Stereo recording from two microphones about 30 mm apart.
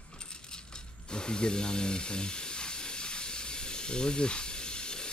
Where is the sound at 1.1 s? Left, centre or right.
Left.